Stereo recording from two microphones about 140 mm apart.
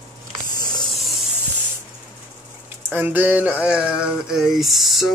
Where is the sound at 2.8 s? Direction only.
15° right (ahead or behind).